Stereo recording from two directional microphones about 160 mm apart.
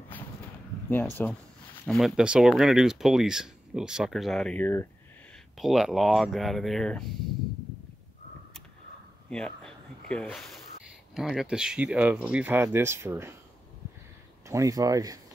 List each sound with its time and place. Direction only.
1.2 s speech: 10° left (ahead or behind)
1.9 s speech: centre (ahead or behind)
5.6 s speech: centre (ahead or behind)
9.3 s speech: 5° left (ahead or behind); by 13.4 s 15° right (ahead or behind)
14.5 s speech: 20° right (ahead or behind)